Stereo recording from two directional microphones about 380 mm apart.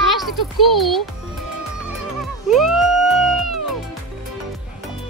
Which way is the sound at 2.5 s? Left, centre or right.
Centre.